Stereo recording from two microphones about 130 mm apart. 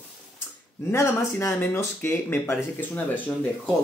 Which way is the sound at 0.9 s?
20° left (ahead or behind).